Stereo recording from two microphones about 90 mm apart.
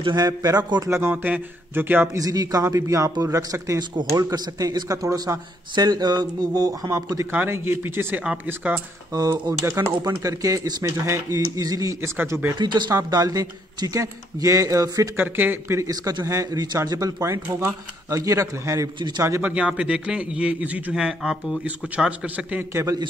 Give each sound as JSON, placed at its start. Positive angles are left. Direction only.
{"t": 0.1, "sound": "speech", "side_deg": -45}
{"t": 0.8, "sound": "speech", "side_deg": -30}
{"t": 1.1, "sound": "speech", "side_deg": -20}
{"t": 2.1, "sound": "speech", "side_deg": -40}
{"t": 3.9, "sound": "speech", "side_deg": -50}
{"t": 7.3, "sound": "speech", "side_deg": -25}
{"t": 9.4, "sound": "speech", "side_deg": -45}
{"t": 12.2, "sound": "speech", "side_deg": -25}
{"t": 12.5, "sound": "speech", "side_deg": -55}
{"t": 12.9, "sound": "speech", "side_deg": -40}
{"t": 15.1, "sound": "speech", "side_deg": -20}
{"t": 15.8, "sound": "speech", "side_deg": -45}
{"t": 18.9, "sound": "speech", "side_deg": -55}
{"t": 19.4, "sound": "a man's voice", "side_deg": -10}